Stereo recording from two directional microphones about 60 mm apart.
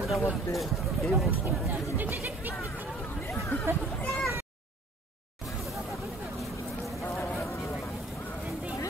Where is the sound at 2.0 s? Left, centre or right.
Right.